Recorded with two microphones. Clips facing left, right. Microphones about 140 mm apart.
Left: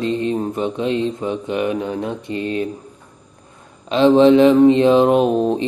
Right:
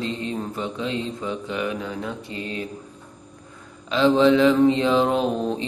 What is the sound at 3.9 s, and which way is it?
Speech, 20° left (ahead or behind).